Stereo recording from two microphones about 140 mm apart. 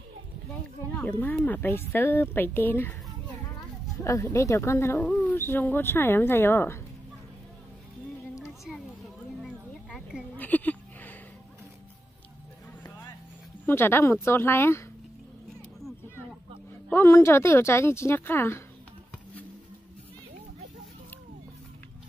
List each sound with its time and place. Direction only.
0.9 s speech: 10° left (ahead or behind)
4.0 s speech: 20° left (ahead or behind)
8.4 s music: centre (ahead or behind)
9.4 s a sound: centre (ahead or behind)
10.3 s a sound: 10° left (ahead or behind)
13.7 s speech: 15° left (ahead or behind)
16.9 s speech: 20° left (ahead or behind)